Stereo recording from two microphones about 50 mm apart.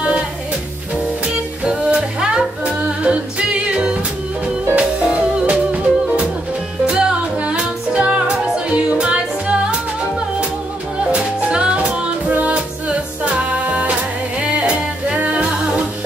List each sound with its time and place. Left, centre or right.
1.2 s music: right
11.1 s music: right